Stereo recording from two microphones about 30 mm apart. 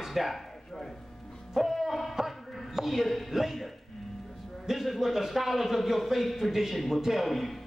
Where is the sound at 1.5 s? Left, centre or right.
Centre.